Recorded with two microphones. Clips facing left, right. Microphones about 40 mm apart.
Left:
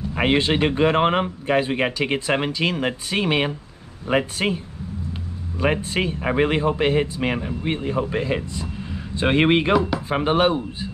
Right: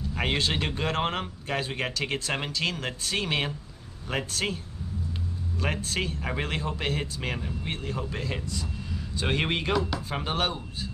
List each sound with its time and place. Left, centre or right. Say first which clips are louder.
0.1 s speech: left 8 dB; left
5.6 s speech: left 9 dB; left